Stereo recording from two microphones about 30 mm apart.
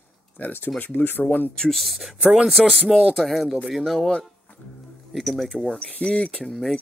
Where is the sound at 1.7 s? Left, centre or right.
Centre.